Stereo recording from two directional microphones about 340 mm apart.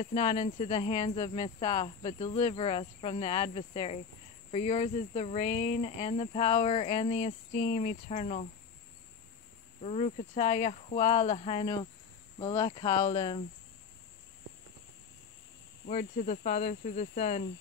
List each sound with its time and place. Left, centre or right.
0.0 s speech: centre
9.8 s speech: centre
15.9 s speech: left